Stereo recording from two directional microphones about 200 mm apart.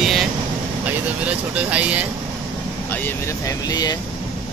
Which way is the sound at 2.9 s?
10° left (ahead or behind).